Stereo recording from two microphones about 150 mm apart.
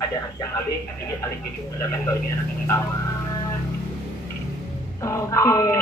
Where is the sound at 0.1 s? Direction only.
20° left (ahead or behind).